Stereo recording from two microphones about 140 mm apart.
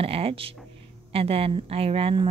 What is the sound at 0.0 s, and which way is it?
Speech, 45° right (ahead or behind).